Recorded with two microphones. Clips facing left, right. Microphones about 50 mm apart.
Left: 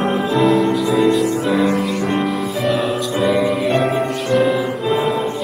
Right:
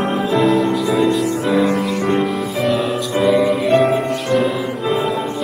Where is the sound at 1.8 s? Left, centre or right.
Right.